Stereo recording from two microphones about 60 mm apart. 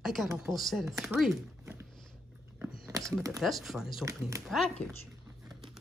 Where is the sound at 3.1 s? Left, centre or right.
Right.